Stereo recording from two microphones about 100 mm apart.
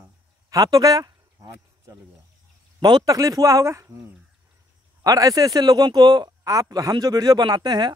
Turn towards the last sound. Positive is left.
turn(degrees=-45)  # may be behind; listen again after turning